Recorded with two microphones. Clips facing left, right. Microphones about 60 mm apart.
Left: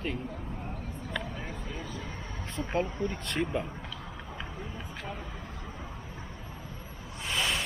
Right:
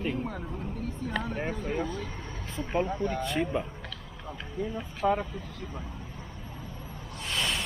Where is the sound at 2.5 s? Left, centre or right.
Centre.